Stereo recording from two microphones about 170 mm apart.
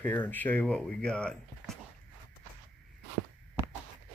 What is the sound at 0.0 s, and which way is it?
Speech, 10° left (ahead or behind).